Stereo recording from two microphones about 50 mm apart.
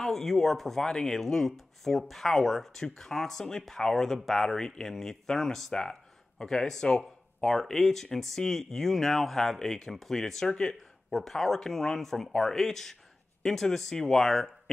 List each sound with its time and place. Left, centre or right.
0.0 s speech: centre